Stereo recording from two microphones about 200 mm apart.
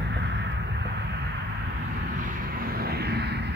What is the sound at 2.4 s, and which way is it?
Vehicle, 45° right (ahead or behind).